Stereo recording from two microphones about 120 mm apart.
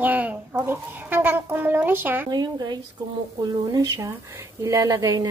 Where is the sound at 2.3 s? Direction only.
35° right (ahead or behind).